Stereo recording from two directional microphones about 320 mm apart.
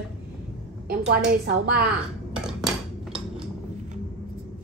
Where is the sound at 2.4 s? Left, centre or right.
Centre.